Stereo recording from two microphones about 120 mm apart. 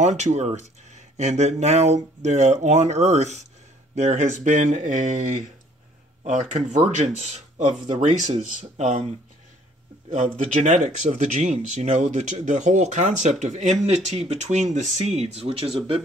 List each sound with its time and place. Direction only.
0.2 s speech: 70° right (ahead or behind)
7.9 s speech: 85° right
8.7 s speech: 70° right (ahead or behind)
10.1 s speech: 75° right (ahead or behind); by 15.7 s 50° right (ahead or behind)